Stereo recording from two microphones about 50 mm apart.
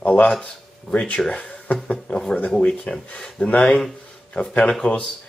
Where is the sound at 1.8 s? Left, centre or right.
Centre.